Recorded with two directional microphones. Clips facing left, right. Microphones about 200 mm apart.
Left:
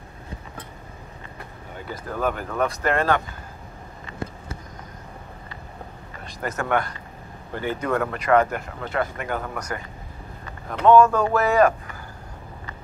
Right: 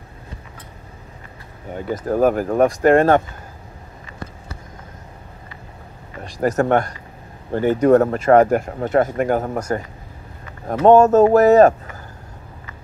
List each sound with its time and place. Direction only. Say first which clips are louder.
1.9 s speech: right 10 dB; 40° right (ahead or behind)
6.4 s speech: right 8 dB; 40° right (ahead or behind)
10.7 s speech: right 5 dB; 45° right (ahead or behind)